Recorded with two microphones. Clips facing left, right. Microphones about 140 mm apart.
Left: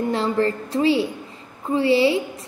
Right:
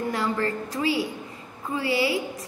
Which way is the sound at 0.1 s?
30° left (ahead or behind).